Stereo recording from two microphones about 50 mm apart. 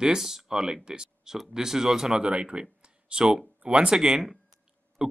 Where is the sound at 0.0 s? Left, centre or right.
Centre.